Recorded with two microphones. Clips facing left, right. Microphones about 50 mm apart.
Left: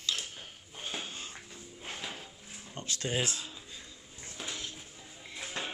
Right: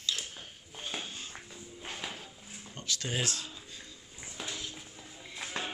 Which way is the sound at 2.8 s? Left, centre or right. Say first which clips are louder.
Even; left.